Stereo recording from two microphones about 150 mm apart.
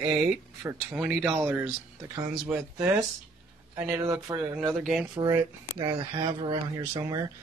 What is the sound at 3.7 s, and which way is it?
Speech, 15° right (ahead or behind).